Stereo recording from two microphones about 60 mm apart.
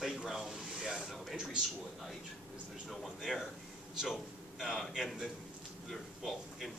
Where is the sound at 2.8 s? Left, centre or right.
Centre.